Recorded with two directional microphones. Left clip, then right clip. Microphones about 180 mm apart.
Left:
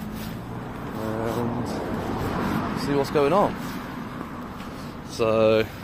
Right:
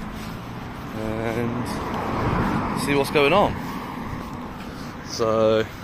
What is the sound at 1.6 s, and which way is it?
Vehicle, 35° right (ahead or behind).